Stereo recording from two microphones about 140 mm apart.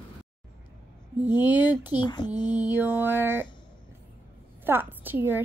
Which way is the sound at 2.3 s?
10° right (ahead or behind).